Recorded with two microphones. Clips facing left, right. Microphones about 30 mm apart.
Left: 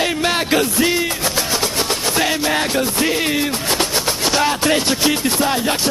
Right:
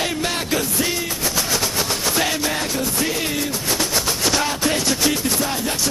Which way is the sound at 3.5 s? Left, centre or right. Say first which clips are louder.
Left 3 dB; left.